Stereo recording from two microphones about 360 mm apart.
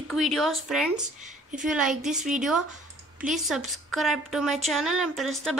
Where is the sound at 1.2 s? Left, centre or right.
Centre.